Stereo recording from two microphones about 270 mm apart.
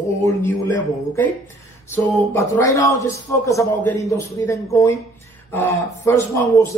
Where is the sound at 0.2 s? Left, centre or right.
Centre.